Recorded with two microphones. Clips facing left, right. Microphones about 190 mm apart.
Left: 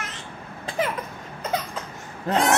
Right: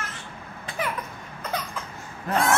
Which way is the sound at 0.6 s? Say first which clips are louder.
Left 4 dB; 25° left (ahead or behind).